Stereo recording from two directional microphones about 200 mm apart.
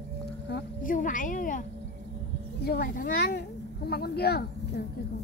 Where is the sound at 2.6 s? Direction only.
50° left (ahead or behind).